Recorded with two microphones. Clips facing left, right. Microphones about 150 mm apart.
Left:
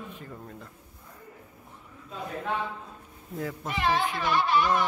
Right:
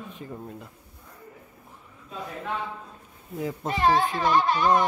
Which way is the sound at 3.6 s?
40° right (ahead or behind).